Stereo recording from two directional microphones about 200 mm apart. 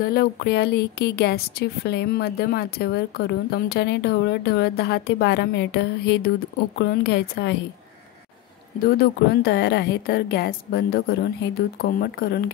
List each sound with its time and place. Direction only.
0.0 s a woman's voice: 50° left (ahead or behind)
8.8 s a woman's voice: 50° left (ahead or behind)